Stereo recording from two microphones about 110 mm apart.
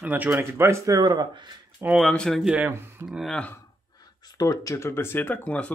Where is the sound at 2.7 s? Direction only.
20° right (ahead or behind).